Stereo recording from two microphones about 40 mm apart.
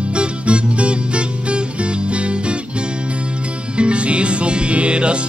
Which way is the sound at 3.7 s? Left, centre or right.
Right.